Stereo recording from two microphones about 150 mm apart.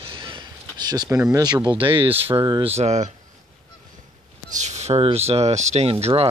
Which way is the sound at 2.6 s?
45° right (ahead or behind).